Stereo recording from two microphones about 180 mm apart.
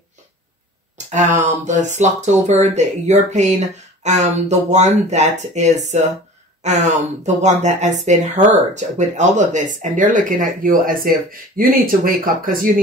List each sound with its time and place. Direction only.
0.9 s speech: 40° right (ahead or behind)